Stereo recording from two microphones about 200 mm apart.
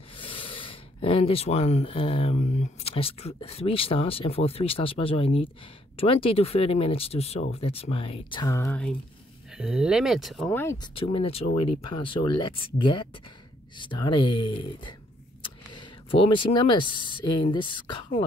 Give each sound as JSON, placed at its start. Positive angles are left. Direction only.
{"t": 0.1, "sound": "speech", "side_deg": 25}
{"t": 9.5, "sound": "speech", "side_deg": -5}
{"t": 10.5, "sound": "speech", "side_deg": 10}
{"t": 11.0, "sound": "speech", "side_deg": 25}